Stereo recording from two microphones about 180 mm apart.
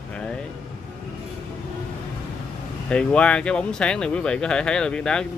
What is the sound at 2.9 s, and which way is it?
Speech, 5° left (ahead or behind).